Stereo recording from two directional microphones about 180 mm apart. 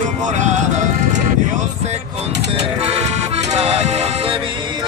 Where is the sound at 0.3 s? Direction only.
40° right (ahead or behind).